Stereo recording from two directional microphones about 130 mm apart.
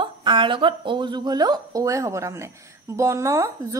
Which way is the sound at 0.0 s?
40° right (ahead or behind).